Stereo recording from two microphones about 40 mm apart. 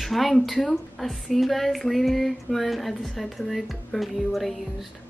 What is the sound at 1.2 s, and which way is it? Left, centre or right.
Music, centre.